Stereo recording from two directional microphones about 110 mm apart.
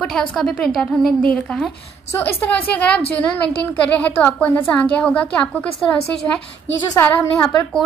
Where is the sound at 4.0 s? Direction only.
15° left (ahead or behind).